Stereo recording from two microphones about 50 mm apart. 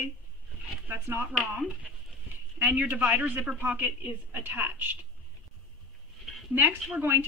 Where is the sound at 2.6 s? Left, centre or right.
Right.